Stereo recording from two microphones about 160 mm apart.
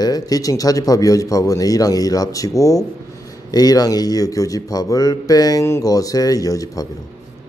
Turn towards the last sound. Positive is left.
turn(degrees=20)  # may be behind; listen again after turning